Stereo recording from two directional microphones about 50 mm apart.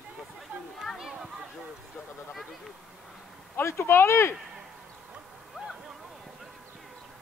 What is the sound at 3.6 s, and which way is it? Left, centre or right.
Speech, left.